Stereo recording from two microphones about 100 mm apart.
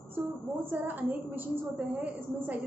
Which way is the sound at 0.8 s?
15° right (ahead or behind).